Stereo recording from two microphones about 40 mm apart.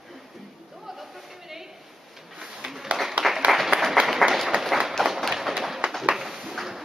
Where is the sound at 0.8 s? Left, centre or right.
Centre.